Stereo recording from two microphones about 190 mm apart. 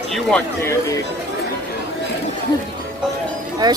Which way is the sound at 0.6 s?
15° left (ahead or behind).